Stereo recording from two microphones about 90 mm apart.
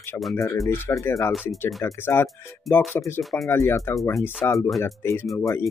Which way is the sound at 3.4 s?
30° left (ahead or behind).